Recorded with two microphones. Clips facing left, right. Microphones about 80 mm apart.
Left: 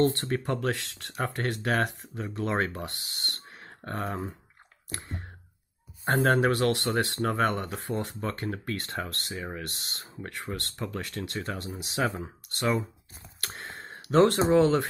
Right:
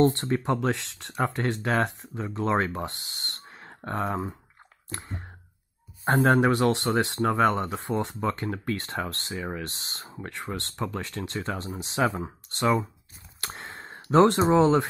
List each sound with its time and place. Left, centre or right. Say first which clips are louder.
0.0 s speech: right 3 dB; right
6.0 s speech: right 3 dB; right
13.4 s a sound: right 1 dB; right
14.1 s speech: right 2 dB; right